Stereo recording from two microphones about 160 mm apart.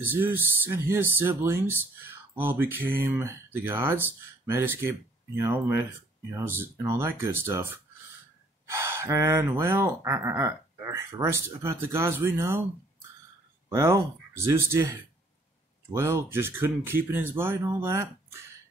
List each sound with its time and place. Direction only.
0.0 s speech: 10° right (ahead or behind)
13.7 s speech: 20° right (ahead or behind)
15.9 s speech: 15° right (ahead or behind)